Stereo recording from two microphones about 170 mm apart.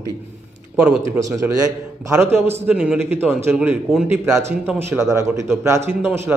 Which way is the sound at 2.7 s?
5° right (ahead or behind).